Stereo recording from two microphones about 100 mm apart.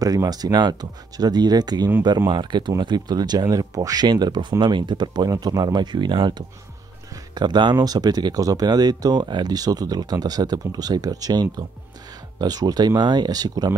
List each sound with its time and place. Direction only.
0.0 s speech: 40° right (ahead or behind)